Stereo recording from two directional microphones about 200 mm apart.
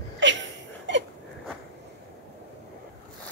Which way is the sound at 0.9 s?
65° right (ahead or behind).